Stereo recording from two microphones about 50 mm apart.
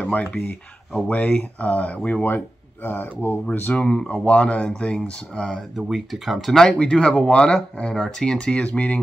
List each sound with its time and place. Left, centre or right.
0.0 s speech: left
2.2 s speech: left
3.4 s speech: left
3.8 s speech: centre
5.8 s speech: centre
6.4 s speech: centre; by 9.0 s left